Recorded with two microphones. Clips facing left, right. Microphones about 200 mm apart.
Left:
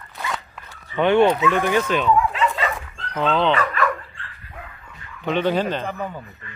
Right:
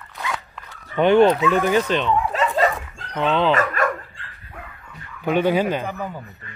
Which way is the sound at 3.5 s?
45° right (ahead or behind).